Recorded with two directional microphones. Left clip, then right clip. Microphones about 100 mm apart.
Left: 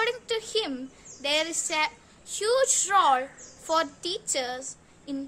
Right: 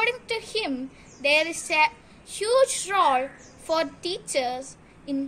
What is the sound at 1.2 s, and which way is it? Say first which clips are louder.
A woman's voice: right 5 dB; 40° left (ahead or behind).